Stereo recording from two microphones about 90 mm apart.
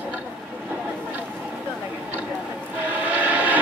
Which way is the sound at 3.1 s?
15° right (ahead or behind).